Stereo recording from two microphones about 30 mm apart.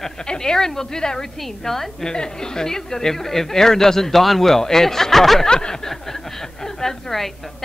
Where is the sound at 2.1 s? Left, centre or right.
Left.